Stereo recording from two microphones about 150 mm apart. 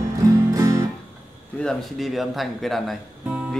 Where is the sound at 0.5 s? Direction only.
20° right (ahead or behind).